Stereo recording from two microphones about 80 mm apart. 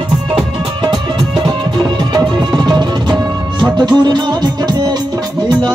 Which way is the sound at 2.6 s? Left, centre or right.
Right.